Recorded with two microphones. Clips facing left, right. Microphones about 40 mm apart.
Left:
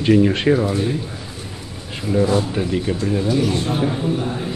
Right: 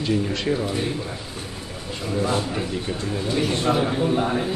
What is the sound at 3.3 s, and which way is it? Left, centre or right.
Speech, right.